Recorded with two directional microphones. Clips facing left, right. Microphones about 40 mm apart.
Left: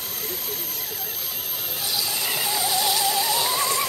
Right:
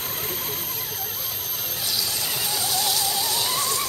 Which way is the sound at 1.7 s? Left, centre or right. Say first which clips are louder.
Left 1 dB; centre.